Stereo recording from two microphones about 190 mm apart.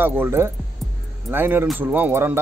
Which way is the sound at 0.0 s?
10° right (ahead or behind).